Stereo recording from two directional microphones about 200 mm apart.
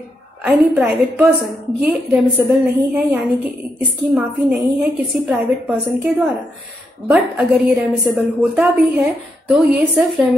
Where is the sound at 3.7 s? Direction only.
5° right (ahead or behind).